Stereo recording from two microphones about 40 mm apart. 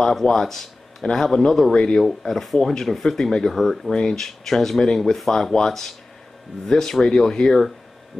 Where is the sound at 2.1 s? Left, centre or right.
Centre.